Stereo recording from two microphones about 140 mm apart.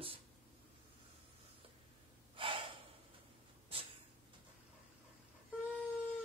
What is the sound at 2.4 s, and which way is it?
Gasp, 35° right (ahead or behind).